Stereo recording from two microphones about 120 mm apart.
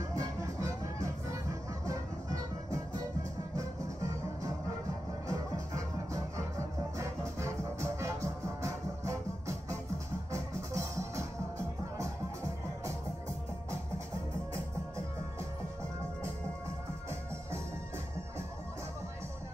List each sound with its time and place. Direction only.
0.1 s music: 25° right (ahead or behind)
5.3 s music: 25° right (ahead or behind)